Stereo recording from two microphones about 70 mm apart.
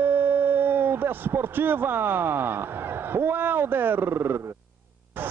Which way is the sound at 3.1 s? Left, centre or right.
Right.